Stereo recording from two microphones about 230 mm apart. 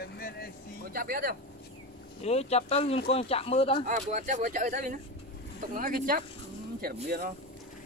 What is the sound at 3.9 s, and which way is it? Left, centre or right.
Speech, right.